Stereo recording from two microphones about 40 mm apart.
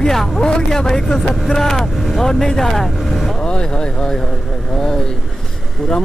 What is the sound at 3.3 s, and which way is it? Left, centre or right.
Speech, left.